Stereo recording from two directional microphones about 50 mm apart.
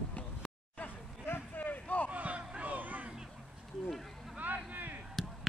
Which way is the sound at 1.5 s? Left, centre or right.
Left.